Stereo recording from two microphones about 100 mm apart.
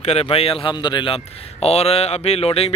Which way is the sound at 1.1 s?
90° left.